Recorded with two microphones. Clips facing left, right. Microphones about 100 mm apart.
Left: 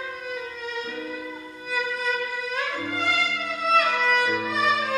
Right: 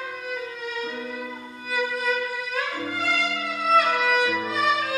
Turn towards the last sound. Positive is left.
turn(degrees=0)  # may be behind; listen again after turning